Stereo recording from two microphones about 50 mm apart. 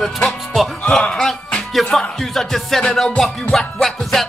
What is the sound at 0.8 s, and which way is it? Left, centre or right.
Speech, left.